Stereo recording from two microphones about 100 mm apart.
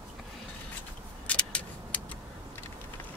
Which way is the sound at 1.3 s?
10° left (ahead or behind).